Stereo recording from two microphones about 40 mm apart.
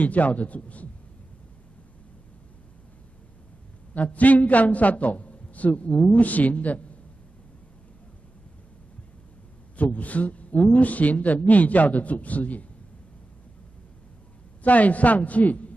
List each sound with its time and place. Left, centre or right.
0.0 s a man's voice: left
3.9 s a man's voice: left
9.8 s a man's voice: left
14.6 s a man's voice: left